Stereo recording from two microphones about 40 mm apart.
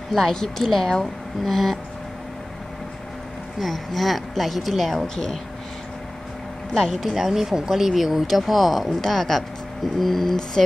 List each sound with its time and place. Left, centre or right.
0.1 s a woman's voice: centre
3.5 s speech: centre
5.0 s a woman's voice: centre
6.7 s speech: centre
7.1 s speech: centre